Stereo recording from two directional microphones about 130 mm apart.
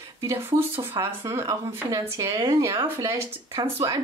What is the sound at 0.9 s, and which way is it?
Speech, 25° right (ahead or behind).